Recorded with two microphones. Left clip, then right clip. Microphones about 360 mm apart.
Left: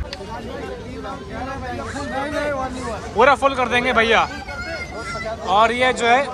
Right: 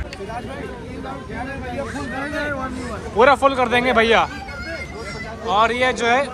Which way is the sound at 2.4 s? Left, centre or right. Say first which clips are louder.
Left 2 dB; left.